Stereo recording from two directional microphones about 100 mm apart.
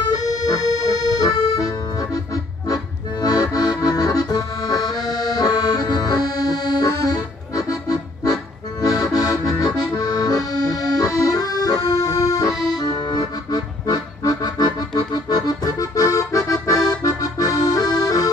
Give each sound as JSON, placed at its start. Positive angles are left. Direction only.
{"t": 0.1, "sound": "accordion", "side_deg": 40}
{"t": 8.8, "sound": "music", "side_deg": 35}
{"t": 9.8, "sound": "accordion", "side_deg": 40}
{"t": 12.7, "sound": "music", "side_deg": 40}